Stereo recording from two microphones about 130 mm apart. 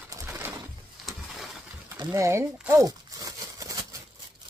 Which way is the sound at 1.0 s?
Centre (ahead or behind).